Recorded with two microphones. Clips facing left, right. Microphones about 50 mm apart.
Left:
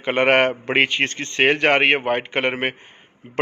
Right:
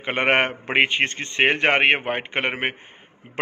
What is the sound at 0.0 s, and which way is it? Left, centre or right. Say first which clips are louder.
A man's voice: left 3 dB; centre.